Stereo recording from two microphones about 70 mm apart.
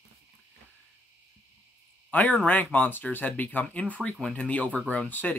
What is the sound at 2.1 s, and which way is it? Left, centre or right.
Speech, left.